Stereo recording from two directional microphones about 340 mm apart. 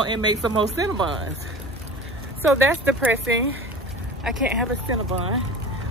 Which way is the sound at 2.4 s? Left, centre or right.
Centre.